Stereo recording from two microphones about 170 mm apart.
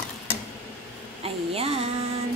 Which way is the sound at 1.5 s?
35° right (ahead or behind).